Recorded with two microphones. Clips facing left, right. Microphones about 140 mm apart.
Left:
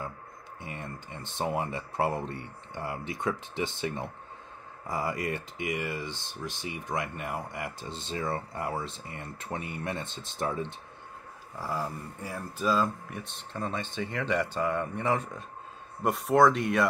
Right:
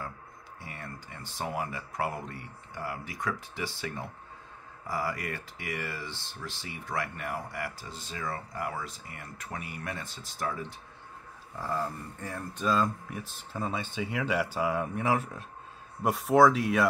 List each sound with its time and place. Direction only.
0.6 s speech: 20° left (ahead or behind)
11.6 s speech: 10° left (ahead or behind)